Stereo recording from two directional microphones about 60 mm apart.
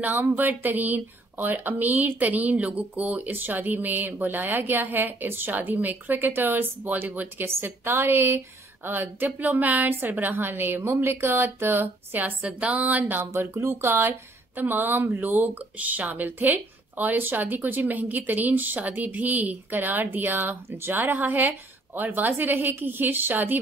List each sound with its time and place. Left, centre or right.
0.0 s speech: right
7.4 s a woman's voice: right
12.4 s a sound: right
13.3 s a woman's voice: right
14.5 s speech: right